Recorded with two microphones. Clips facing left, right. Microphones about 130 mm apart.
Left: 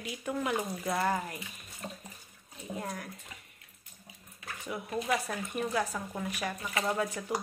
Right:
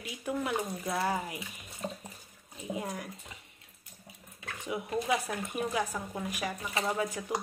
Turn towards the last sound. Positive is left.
turn(degrees=-5)  # may be behind; listen again after turning